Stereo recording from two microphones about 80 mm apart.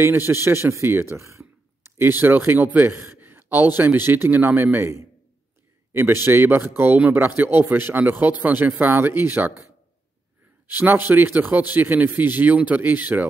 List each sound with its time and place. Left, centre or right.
0.0 s a man's voice: right
10.7 s a man's voice: right